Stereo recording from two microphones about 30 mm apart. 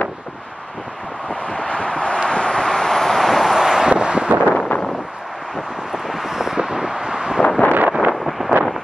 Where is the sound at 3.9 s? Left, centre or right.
Right.